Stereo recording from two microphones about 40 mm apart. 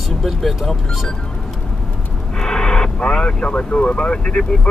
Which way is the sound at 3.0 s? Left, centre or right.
Left.